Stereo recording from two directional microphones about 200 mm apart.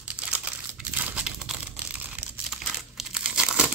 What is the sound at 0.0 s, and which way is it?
Crumpling, 5° right (ahead or behind).